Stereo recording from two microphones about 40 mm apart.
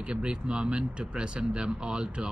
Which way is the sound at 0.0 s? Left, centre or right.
Right.